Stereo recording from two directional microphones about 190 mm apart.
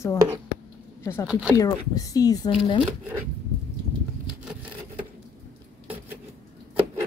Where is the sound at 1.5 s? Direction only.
20° left (ahead or behind).